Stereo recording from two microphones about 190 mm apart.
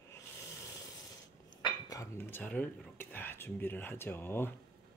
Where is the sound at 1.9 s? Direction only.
15° left (ahead or behind).